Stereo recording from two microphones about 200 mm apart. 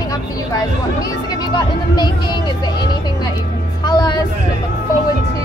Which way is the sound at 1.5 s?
20° left (ahead or behind).